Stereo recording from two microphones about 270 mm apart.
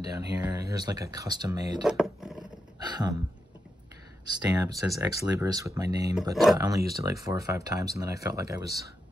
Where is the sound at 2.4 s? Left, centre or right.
Centre.